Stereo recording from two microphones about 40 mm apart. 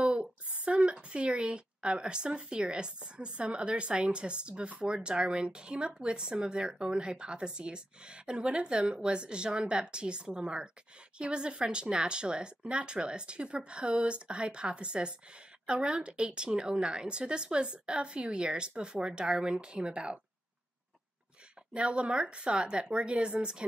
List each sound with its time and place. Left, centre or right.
0.0 s a sound: right
1.0 s speech: right
21.7 s speech: right